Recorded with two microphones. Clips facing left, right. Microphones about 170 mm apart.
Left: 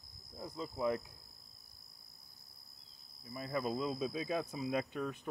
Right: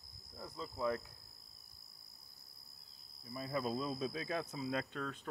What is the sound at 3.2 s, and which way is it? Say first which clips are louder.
Speech: left 1 dB; centre (ahead or behind).